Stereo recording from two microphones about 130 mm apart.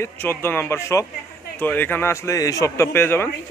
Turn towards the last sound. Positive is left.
turn(degrees=20)  # may be behind; listen again after turning